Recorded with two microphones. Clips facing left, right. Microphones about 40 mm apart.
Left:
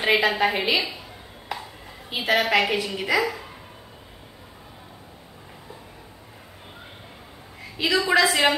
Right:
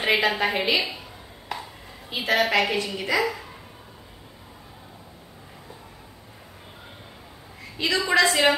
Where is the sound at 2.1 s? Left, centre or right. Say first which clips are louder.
Left 1 dB; centre.